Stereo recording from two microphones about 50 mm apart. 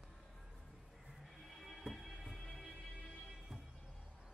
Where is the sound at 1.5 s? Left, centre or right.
Centre.